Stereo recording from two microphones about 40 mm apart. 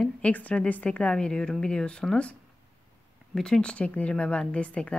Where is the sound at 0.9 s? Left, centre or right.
Left.